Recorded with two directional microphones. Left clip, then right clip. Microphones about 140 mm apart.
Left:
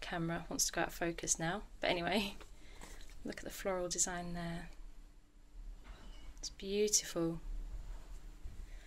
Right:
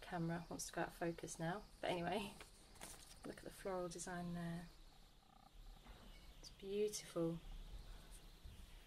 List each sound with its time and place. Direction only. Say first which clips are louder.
0.0 s speech: left 7 dB; 20° left (ahead or behind)
6.6 s speech: left 9 dB; 15° left (ahead or behind)